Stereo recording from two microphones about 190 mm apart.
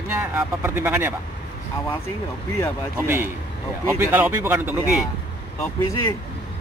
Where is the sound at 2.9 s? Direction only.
15° right (ahead or behind).